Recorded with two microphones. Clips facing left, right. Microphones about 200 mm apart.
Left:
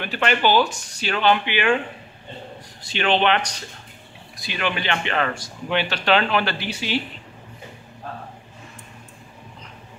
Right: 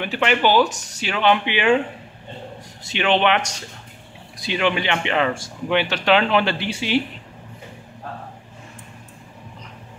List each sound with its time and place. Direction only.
0.0 s a man's voice: 15° right (ahead or behind)
2.9 s speech: 15° right (ahead or behind)
4.5 s a man's voice: 20° right (ahead or behind)